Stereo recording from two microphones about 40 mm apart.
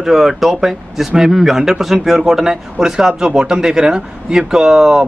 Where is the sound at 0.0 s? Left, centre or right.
Centre.